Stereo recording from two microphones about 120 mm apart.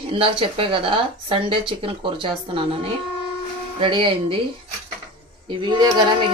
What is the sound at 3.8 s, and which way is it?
Speech, 45° right (ahead or behind).